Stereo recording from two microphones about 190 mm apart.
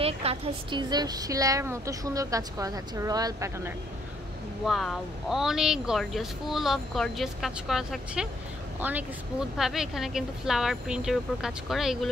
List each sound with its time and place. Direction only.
0.0 s a woman's voice: 30° right (ahead or behind); by 3.7 s 15° right (ahead or behind)
4.6 s speech: centre (ahead or behind)